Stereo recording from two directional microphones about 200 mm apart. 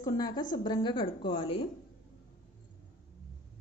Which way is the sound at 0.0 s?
20° left (ahead or behind).